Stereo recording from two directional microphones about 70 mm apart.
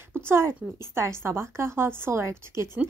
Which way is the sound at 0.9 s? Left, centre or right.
Right.